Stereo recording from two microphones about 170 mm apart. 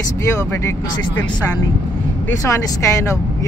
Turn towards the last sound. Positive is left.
turn(degrees=20)  # may be behind; listen again after turning